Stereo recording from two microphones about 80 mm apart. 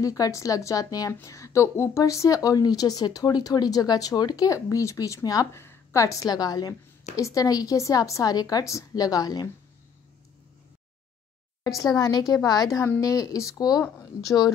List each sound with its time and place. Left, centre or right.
0.0 s a woman's voice: left
5.5 s a sound: left
6.0 s a woman's voice: left
11.6 s a woman's voice: left